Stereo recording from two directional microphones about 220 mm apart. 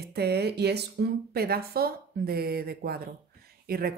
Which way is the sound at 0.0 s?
45° right (ahead or behind).